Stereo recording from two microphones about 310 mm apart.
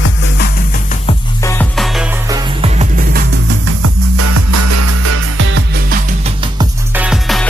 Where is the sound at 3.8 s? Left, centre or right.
Right.